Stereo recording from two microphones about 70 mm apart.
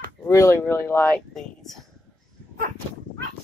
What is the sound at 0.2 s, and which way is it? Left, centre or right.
Speech, left.